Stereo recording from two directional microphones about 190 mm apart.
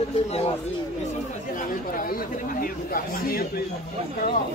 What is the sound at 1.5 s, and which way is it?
Speech, 45° left (ahead or behind).